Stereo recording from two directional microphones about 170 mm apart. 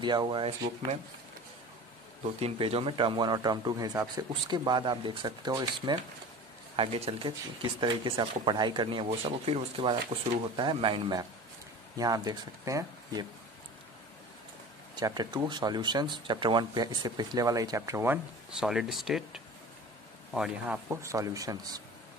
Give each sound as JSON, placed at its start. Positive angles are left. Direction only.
{"t": 0.0, "sound": "speech", "side_deg": -25}
{"t": 2.4, "sound": "speech", "side_deg": -35}
{"t": 15.0, "sound": "speech", "side_deg": -25}